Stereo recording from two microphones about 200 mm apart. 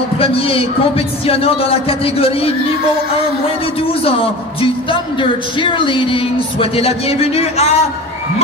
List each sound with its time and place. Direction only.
0.2 s speech: 30° left (ahead or behind)
4.0 s speech: 25° left (ahead or behind)